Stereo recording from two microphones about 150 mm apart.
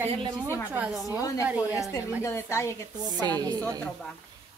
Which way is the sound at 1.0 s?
20° left (ahead or behind).